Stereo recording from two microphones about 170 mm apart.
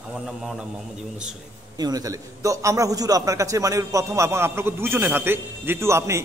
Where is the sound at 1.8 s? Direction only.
20° right (ahead or behind).